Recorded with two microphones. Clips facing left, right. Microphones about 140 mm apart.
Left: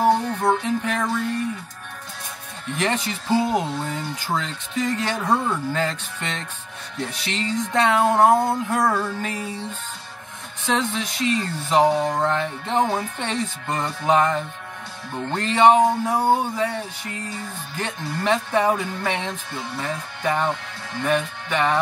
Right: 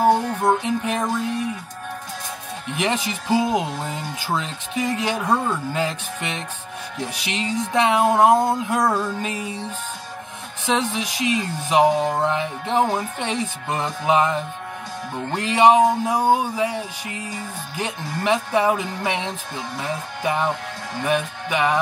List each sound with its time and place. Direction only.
0.1 s music: 15° right (ahead or behind)
2.8 s speech: 15° right (ahead or behind)
10.6 s speech: 15° right (ahead or behind)